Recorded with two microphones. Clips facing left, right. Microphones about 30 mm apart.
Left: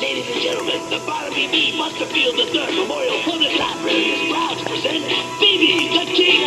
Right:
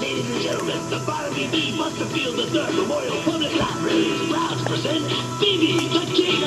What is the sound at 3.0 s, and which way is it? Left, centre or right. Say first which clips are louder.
Music: left 4 dB; left.